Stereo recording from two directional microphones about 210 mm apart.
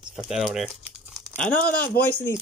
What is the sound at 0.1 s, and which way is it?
Speech, centre (ahead or behind).